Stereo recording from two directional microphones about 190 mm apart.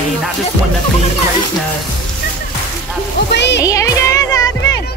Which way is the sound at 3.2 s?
65° left (ahead or behind).